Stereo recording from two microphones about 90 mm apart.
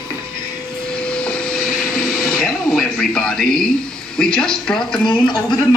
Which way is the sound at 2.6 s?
10° left (ahead or behind).